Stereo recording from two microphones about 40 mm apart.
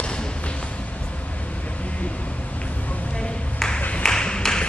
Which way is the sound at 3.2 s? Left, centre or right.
Left.